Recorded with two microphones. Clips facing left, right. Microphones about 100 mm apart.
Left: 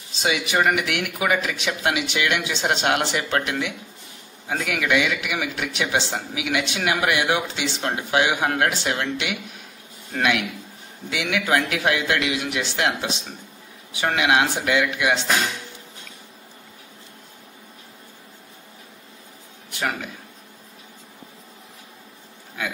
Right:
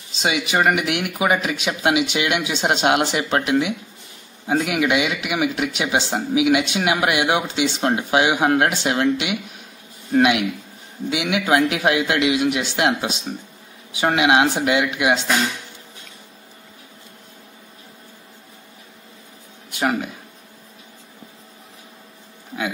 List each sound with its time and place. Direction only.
0.2 s speech: 20° right (ahead or behind)
10.1 s speech: 20° right (ahead or behind)
19.7 s speech: 20° right (ahead or behind)